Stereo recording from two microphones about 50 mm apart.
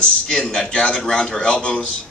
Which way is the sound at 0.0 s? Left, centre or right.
Centre.